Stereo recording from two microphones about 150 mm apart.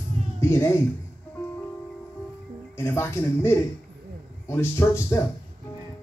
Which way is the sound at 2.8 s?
15° left (ahead or behind).